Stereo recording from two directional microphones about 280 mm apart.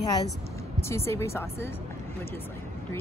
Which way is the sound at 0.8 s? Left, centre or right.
Centre.